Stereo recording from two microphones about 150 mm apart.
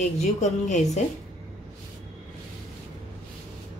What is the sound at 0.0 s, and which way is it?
Speech, 50° left (ahead or behind).